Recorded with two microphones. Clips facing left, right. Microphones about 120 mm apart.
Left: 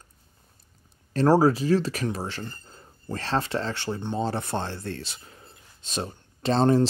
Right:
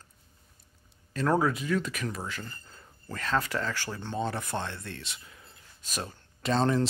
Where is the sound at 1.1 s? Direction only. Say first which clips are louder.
Left 7 dB; 35° left (ahead or behind).